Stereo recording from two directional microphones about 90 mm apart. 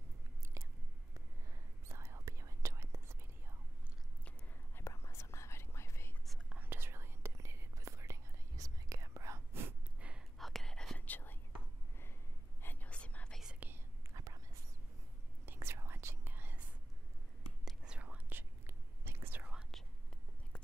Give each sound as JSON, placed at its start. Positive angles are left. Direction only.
{"t": 0.6, "sound": "chewing", "side_deg": -30}
{"t": 1.9, "sound": "whispering", "side_deg": -30}
{"t": 4.7, "sound": "whispering", "side_deg": 30}
{"t": 6.6, "sound": "whispering", "side_deg": -25}
{"t": 9.9, "sound": "whispering", "side_deg": -15}
{"t": 10.3, "sound": "whispering", "side_deg": 0}
{"t": 11.0, "sound": "whispering", "side_deg": 20}
{"t": 12.6, "sound": "whispering", "side_deg": 20}
{"t": 14.1, "sound": "whispering", "side_deg": -35}
{"t": 15.4, "sound": "whispering", "side_deg": -25}
{"t": 17.8, "sound": "whispering", "side_deg": -15}
{"t": 18.7, "sound": "whispering", "side_deg": -25}